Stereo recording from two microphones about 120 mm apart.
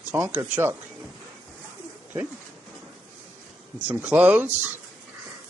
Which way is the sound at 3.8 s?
15° right (ahead or behind).